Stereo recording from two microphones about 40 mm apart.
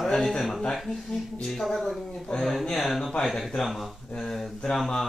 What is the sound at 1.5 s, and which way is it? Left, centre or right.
A man's voice, centre.